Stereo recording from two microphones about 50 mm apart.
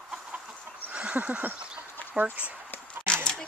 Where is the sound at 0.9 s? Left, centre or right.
Right.